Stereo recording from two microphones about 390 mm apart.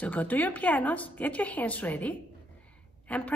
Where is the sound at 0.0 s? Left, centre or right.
Centre.